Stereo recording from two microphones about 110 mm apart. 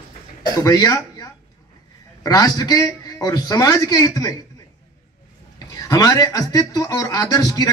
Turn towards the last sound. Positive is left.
turn(degrees=35)  # may be behind; listen again after turning